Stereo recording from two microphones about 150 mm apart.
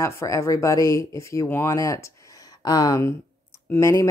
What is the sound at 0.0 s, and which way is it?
Speech, 20° left (ahead or behind).